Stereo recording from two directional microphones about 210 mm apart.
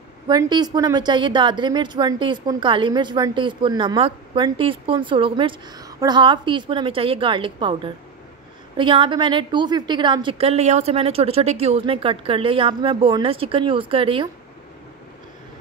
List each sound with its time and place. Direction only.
0.3 s a woman's voice: 20° right (ahead or behind)